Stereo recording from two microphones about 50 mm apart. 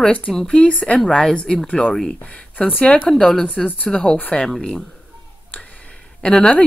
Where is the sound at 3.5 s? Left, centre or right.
Left.